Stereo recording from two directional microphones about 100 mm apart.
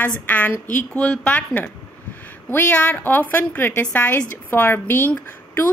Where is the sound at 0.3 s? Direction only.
15° left (ahead or behind).